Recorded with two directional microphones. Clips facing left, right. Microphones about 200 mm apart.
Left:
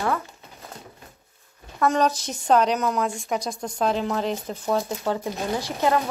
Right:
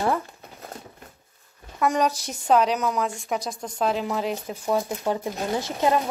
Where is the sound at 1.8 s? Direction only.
15° right (ahead or behind).